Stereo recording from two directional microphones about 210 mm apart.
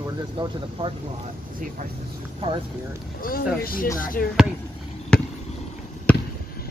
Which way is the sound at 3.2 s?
45° left (ahead or behind).